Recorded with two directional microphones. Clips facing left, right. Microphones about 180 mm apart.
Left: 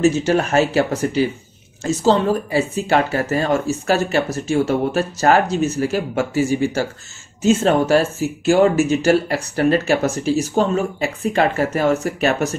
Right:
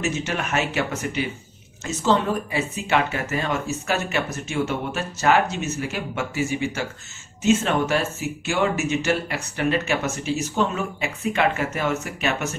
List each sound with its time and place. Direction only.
0.0 s speech: 35° left (ahead or behind)